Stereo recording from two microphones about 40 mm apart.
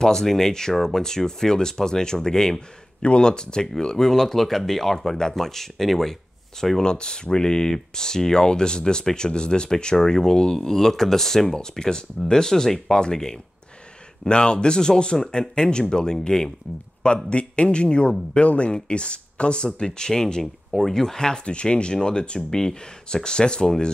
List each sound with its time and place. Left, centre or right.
0.0 s speech: centre
6.8 s speech: left
17.0 s speech: left
20.7 s speech: centre